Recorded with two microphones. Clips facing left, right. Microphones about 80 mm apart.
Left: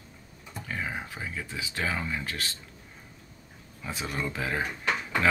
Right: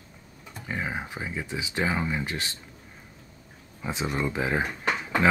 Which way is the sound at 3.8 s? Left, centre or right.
Right.